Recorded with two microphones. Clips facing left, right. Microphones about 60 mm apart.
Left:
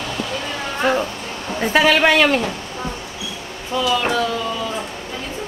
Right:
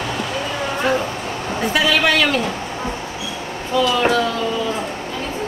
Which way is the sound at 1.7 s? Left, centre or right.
Left.